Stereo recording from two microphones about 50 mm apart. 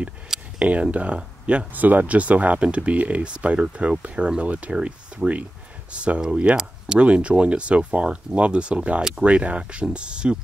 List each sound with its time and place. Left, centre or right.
0.6 s speech: right
1.7 s speech: right; by 10.3 s centre